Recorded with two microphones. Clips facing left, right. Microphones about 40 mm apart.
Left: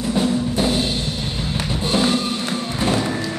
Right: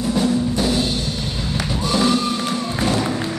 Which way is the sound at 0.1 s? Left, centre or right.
Left.